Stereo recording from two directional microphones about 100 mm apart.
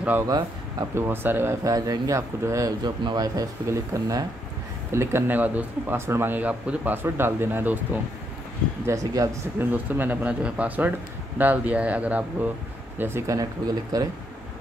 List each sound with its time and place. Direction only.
0.3 s speech: 40° right (ahead or behind)
0.9 s speech: 20° right (ahead or behind); by 3.4 s 40° right (ahead or behind)
3.6 s speech: 30° right (ahead or behind)
8.8 s speech: 35° right (ahead or behind)
9.6 s speech: 20° right (ahead or behind)
13.3 s speech: 40° right (ahead or behind)